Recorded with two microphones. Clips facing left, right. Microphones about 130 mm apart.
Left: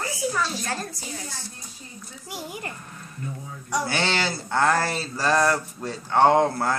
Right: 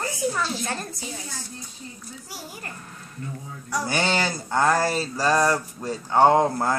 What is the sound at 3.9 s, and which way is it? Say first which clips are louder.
Speech: right 1 dB; 15° right (ahead or behind).